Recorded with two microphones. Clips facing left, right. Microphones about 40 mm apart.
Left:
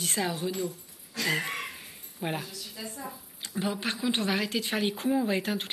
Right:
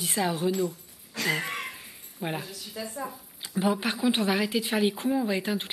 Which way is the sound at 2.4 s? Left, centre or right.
Centre.